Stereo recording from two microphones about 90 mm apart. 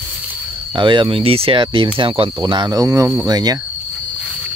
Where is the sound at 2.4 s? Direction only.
60° right (ahead or behind).